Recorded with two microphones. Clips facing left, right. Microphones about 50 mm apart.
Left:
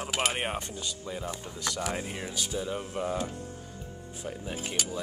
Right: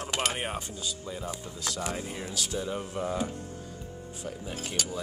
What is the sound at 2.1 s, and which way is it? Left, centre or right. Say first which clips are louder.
Speech: even; centre.